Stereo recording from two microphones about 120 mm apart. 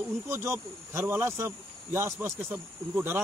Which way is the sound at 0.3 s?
20° right (ahead or behind).